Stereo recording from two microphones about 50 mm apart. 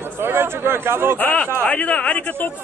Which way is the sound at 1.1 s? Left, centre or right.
Left.